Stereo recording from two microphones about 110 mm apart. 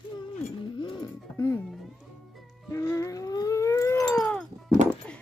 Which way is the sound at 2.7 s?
30° left (ahead or behind).